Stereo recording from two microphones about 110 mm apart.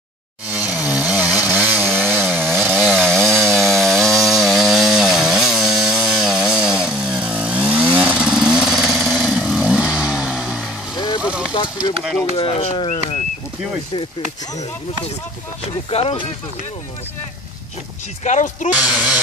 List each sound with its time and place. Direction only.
0.6 s chainsaw: 10° right (ahead or behind)
2.0 s chainsaw: 5° left (ahead or behind)
3.1 s wood: 5° left (ahead or behind)
11.0 s vehicle: 40° left (ahead or behind)
11.2 s vehicle: 10° right (ahead or behind)
12.4 s a sound: 60° left (ahead or behind)
12.8 s a sound: 90° left
15.9 s speech: 65° left (ahead or behind)
18.8 s speech: 15° right (ahead or behind)